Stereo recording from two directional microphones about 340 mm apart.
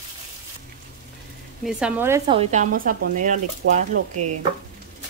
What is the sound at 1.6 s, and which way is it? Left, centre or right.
Speech, centre.